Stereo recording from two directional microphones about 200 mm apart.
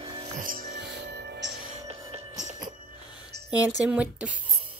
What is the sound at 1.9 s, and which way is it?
Music, 30° right (ahead or behind).